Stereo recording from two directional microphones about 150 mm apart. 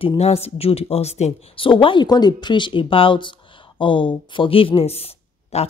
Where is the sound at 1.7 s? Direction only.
35° left (ahead or behind).